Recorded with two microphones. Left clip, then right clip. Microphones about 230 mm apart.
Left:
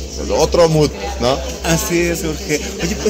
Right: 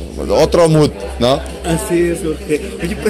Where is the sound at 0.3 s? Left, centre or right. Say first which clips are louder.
Right 2 dB; right.